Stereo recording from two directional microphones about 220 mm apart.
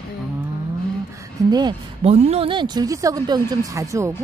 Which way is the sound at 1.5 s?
20° right (ahead or behind).